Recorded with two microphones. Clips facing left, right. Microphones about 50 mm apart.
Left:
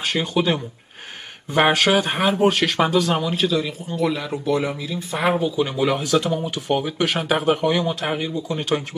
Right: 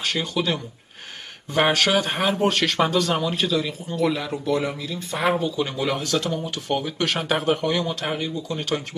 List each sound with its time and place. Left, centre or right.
0.0 s speech: centre
1.7 s speech: centre